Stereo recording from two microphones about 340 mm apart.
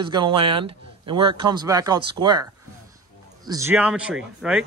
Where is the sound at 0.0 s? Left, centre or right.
Centre.